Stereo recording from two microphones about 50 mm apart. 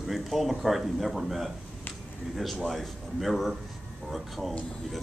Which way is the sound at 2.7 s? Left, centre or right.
Centre.